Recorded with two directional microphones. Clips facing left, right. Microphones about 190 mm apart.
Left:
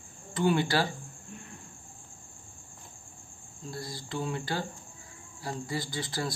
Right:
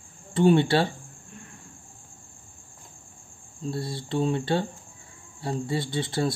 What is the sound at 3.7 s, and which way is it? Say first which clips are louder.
Speech: right 8 dB; 25° right (ahead or behind).